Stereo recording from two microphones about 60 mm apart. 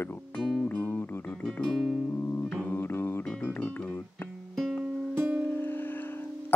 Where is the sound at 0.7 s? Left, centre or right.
Left.